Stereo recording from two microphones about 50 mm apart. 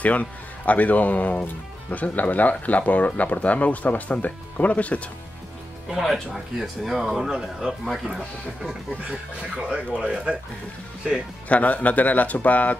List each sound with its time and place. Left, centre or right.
0.0 s speech: left
5.9 s speech: centre
7.2 s speech: centre
9.6 s speech: centre
11.4 s speech: left